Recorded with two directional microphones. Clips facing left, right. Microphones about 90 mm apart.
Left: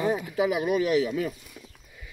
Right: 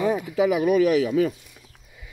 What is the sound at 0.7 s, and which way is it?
Speech, 85° right.